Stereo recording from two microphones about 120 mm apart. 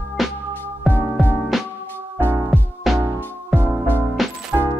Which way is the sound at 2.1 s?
20° right (ahead or behind).